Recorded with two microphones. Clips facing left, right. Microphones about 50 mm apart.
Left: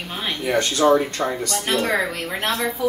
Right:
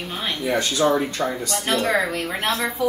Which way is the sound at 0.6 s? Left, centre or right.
Left.